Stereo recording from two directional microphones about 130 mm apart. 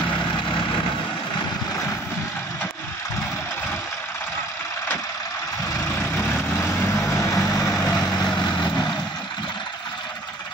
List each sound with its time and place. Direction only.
6.1 s vehicle: 20° left (ahead or behind)